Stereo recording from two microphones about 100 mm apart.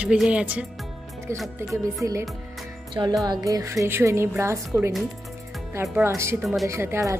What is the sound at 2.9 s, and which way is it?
Music, 50° right (ahead or behind).